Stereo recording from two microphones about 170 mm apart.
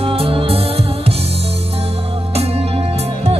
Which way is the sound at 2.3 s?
35° right (ahead or behind).